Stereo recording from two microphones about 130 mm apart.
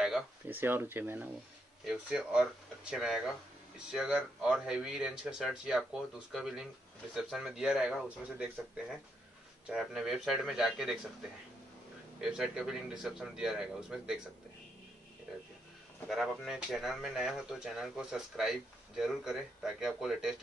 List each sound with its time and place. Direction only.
0.5 s speech: 15° right (ahead or behind)
9.7 s speech: 5° right (ahead or behind)
12.2 s speech: 5° right (ahead or behind)
16.1 s speech: centre (ahead or behind)